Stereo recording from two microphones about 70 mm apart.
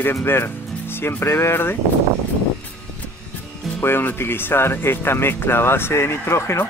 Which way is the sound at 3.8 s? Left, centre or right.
Left.